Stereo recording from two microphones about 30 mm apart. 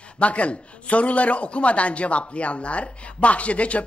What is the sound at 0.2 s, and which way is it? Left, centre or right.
A man's voice, left.